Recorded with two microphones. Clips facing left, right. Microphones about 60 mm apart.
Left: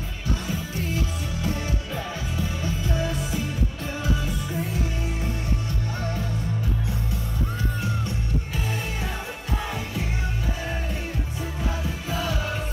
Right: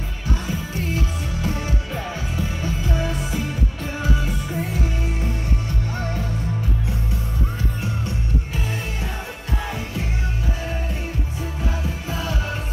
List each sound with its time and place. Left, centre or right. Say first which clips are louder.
2.6 s music: right 2 dB; right